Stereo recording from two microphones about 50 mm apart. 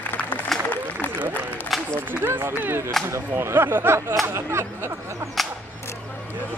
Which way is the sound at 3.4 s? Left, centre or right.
Right.